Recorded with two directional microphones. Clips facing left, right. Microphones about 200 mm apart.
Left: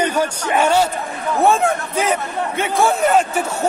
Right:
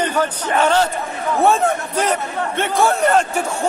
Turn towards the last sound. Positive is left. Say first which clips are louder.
# even
turn(degrees=0)  # may be behind; listen again after turning